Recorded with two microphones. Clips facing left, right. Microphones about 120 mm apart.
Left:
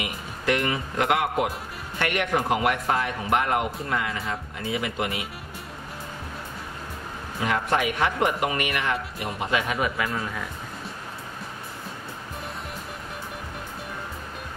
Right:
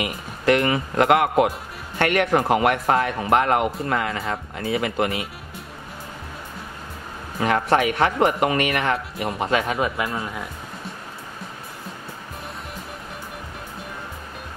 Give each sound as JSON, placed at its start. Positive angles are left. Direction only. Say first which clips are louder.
{"t": 0.5, "sound": "a man's voice", "louder": "right 6 dB", "side_deg": -60}
{"t": 2.6, "sound": "speech", "louder": "right 5 dB", "side_deg": -60}
{"t": 7.3, "sound": "speech", "louder": "right 5 dB", "side_deg": -40}
{"t": 8.7, "sound": "speech", "louder": "right 4 dB", "side_deg": -60}
{"t": 9.4, "sound": "speech", "louder": "right 3 dB", "side_deg": -40}